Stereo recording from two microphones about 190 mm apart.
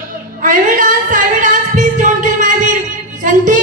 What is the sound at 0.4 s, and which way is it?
Singing, 40° right (ahead or behind).